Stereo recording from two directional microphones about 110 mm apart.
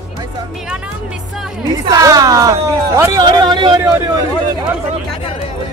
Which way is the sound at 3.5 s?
45° right (ahead or behind).